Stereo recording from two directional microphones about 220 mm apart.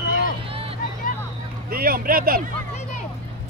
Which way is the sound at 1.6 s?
40° right (ahead or behind).